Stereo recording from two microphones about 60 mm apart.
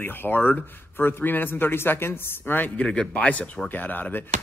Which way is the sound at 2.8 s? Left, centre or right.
Centre.